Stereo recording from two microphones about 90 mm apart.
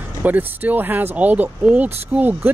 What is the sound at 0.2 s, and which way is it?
Speech, 20° right (ahead or behind).